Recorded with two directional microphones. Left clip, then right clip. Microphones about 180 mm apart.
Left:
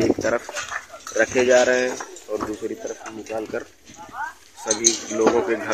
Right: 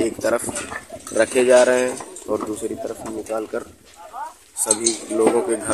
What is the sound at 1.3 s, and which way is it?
Speech, 30° right (ahead or behind).